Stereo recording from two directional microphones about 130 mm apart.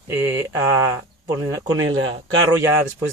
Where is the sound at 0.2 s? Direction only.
20° right (ahead or behind).